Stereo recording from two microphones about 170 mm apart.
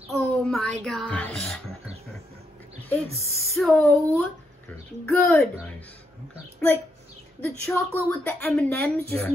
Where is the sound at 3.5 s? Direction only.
Centre (ahead or behind).